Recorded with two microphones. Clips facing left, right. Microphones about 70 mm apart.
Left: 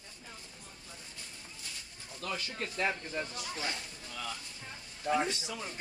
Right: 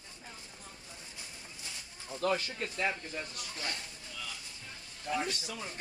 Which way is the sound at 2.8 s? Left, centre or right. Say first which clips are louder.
Left 1 dB; left.